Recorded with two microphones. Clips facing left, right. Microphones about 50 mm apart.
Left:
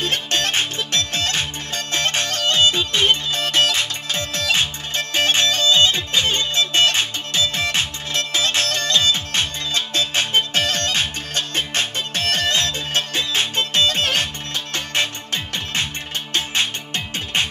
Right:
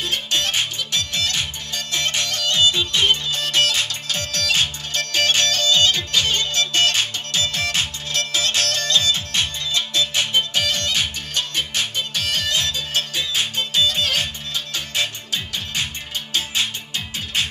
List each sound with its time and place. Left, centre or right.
0.0 s music: left